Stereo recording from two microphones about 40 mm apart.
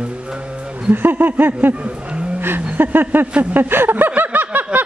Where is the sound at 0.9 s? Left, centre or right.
Right.